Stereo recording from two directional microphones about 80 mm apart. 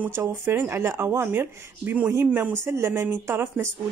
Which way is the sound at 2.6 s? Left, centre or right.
Right.